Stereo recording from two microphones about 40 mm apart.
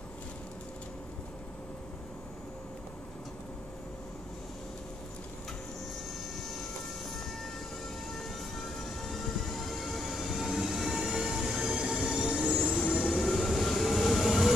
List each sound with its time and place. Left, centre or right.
8.1 s vehicle: centre
10.5 s train: centre
12.6 s train: left
13.0 s train: centre